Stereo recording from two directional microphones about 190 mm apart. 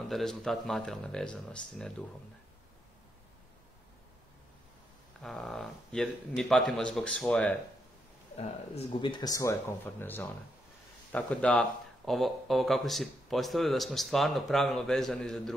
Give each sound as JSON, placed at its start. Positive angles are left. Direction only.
{"t": 0.1, "sound": "speech", "side_deg": 0}
{"t": 5.2, "sound": "speech", "side_deg": 0}
{"t": 8.4, "sound": "speech", "side_deg": 30}